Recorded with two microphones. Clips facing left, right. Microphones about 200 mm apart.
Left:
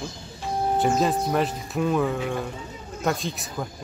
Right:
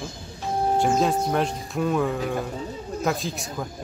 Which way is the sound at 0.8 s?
Centre (ahead or behind).